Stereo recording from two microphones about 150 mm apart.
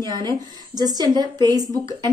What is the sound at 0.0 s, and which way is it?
A woman's voice, 30° right (ahead or behind).